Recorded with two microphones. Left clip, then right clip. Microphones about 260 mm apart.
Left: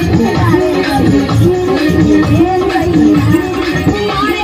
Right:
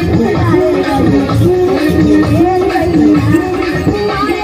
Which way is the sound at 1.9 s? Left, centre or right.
Left.